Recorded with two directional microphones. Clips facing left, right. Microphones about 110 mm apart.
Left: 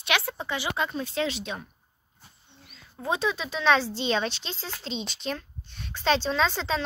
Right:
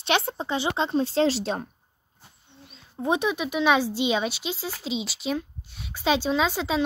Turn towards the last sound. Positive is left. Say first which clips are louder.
# right 2 dB
turn(degrees=-10)  # may be behind; listen again after turning